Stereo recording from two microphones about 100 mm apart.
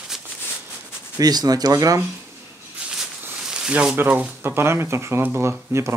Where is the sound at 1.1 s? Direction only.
40° right (ahead or behind).